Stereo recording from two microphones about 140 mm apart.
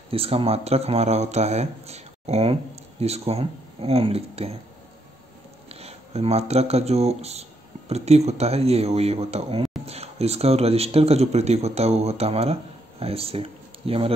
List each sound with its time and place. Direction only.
0.1 s speech: 45° right (ahead or behind)
5.7 s speech: 45° right (ahead or behind)